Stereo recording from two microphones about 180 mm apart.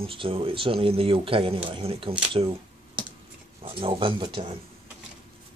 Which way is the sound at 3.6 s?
30° right (ahead or behind).